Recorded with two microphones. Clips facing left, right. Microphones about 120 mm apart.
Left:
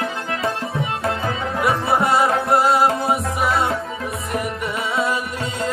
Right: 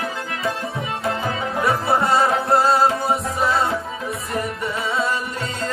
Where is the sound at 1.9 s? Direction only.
5° left (ahead or behind).